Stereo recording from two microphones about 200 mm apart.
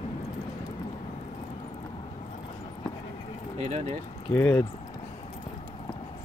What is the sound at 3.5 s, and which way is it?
Speech, 35° right (ahead or behind).